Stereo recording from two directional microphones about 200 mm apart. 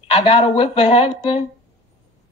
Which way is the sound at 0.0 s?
30° left (ahead or behind).